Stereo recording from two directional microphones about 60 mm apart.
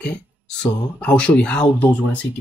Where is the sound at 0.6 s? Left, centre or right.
Centre.